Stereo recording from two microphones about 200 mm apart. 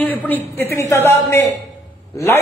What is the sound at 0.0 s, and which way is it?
A man's voice, 10° left (ahead or behind).